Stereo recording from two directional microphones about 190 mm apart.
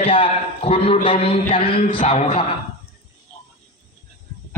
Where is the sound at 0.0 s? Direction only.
30° left (ahead or behind).